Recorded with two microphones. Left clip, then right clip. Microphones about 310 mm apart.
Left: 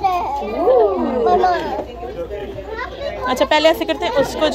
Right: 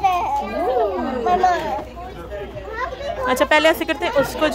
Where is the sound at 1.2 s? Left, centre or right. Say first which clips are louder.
Left 1 dB; right.